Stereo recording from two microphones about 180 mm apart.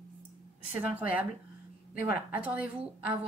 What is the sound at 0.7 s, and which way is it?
Speech, 10° right (ahead or behind).